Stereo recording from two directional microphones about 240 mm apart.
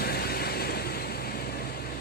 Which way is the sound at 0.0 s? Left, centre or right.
Left.